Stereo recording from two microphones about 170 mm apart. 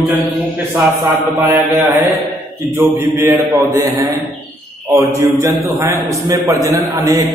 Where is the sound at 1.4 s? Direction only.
15° right (ahead or behind).